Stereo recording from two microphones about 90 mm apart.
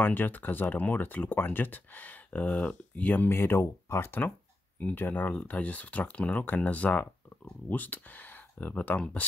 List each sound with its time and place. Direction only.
0.0 s speech: 20° left (ahead or behind)